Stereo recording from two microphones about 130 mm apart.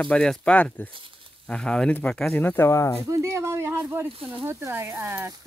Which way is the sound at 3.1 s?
20° right (ahead or behind).